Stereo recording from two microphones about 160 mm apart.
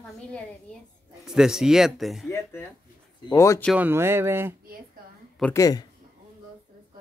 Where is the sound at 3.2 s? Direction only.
20° left (ahead or behind).